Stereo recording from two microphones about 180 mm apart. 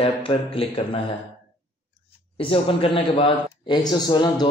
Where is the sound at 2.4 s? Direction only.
30° left (ahead or behind).